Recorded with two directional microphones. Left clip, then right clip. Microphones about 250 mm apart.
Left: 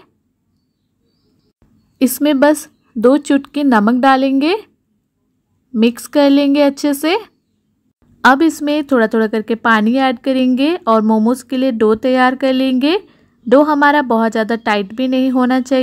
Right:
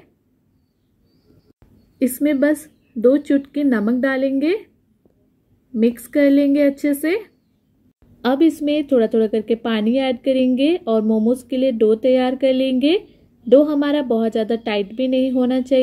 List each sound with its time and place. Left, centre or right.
2.0 s a woman's voice: left
5.8 s a woman's voice: left